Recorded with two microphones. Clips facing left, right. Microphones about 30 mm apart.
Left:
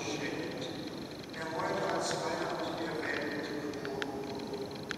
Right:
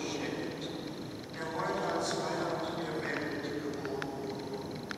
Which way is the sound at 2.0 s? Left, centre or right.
Centre.